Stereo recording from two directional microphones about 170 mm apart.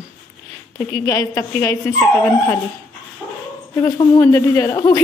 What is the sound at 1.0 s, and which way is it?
A woman's voice, 20° left (ahead or behind).